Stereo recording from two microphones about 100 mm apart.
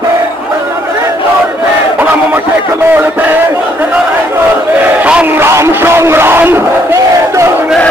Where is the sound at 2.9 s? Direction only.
20° right (ahead or behind).